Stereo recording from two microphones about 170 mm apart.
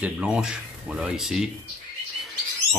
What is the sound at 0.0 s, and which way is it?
Speech, 5° right (ahead or behind).